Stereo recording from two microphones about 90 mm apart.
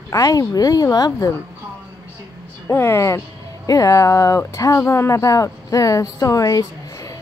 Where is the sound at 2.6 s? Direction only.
30° left (ahead or behind).